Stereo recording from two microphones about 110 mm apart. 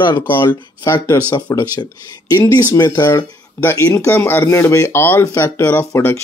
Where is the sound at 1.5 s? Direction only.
35° left (ahead or behind).